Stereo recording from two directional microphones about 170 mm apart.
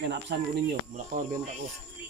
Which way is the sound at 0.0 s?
90° right.